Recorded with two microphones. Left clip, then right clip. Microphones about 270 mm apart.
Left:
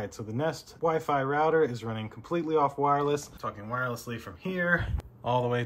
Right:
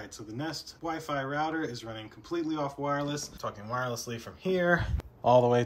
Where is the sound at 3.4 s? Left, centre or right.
Centre.